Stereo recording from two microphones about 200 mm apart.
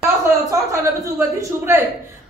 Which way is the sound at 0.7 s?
15° right (ahead or behind).